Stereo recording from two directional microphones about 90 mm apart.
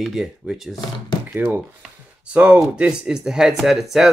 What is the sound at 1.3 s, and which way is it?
Speech, 20° right (ahead or behind).